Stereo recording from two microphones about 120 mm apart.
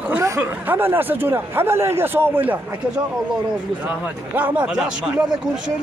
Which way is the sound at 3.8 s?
15° right (ahead or behind).